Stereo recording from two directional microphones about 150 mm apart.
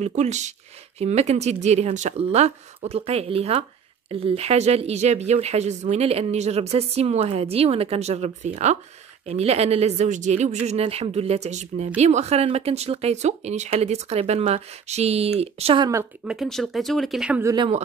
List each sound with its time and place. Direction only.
0.0 s speech: 50° right (ahead or behind)
9.3 s speech: 45° right (ahead or behind)
16.3 s speech: centre (ahead or behind)